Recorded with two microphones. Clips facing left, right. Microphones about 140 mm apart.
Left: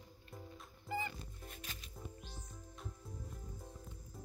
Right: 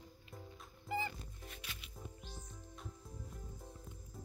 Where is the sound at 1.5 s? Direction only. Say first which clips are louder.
Even; 40° left (ahead or behind).